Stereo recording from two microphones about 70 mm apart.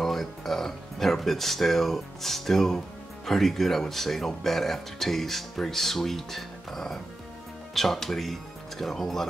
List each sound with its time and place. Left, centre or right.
0.0 s speech: centre